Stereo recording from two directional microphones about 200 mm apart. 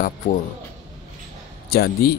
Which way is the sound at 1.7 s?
50° left (ahead or behind).